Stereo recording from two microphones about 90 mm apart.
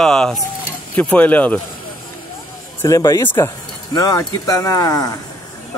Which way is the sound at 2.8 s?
40° left (ahead or behind).